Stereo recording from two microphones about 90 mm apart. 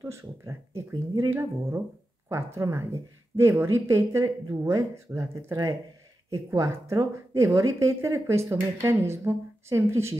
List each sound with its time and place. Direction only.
0.0 s speech: 35° right (ahead or behind)